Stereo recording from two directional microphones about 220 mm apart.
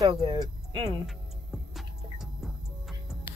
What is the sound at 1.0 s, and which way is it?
Music, centre (ahead or behind).